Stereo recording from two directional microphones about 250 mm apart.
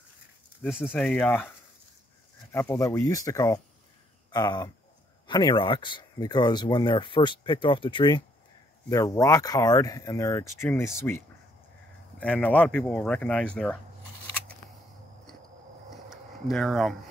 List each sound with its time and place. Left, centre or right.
0.6 s speech: centre
2.5 s speech: centre
15.9 s a sound: centre